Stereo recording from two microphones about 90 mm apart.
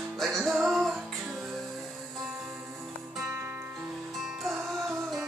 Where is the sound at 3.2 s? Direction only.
30° right (ahead or behind).